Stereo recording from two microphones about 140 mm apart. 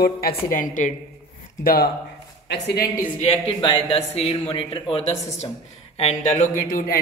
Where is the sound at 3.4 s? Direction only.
40° left (ahead or behind).